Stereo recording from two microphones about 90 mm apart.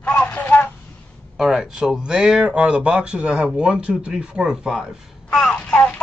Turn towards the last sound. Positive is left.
turn(degrees=15)  # may be behind; listen again after turning